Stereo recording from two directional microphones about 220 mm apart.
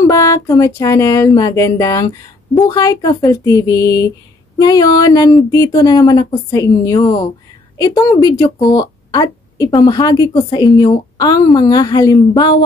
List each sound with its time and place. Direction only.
0.0 s a woman's voice: 15° left (ahead or behind)